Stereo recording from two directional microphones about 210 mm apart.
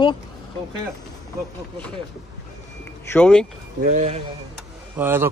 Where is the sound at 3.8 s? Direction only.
35° right (ahead or behind).